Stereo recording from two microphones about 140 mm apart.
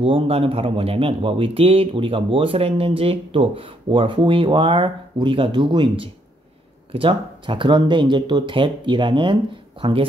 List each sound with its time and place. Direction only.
0.0 s speech: 40° right (ahead or behind)